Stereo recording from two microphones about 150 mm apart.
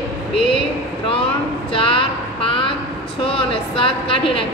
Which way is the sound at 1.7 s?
35° left (ahead or behind).